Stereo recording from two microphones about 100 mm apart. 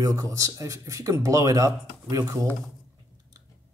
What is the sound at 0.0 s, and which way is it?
A man's voice, 35° right (ahead or behind).